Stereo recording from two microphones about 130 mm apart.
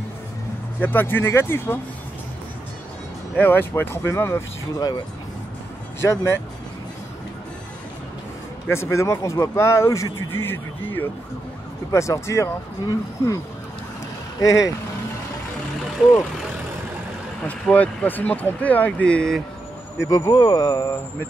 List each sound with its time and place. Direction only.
0.7 s speech: 15° left (ahead or behind)
3.3 s speech: 15° left (ahead or behind)
5.9 s speech: 20° left (ahead or behind)
8.6 s speech: 20° left (ahead or behind)
14.4 s speech: 25° left (ahead or behind)
17.5 s speech: 10° left (ahead or behind)
20.0 s speech: 25° left (ahead or behind)